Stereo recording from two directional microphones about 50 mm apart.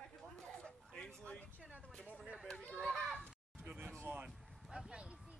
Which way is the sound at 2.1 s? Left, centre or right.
Right.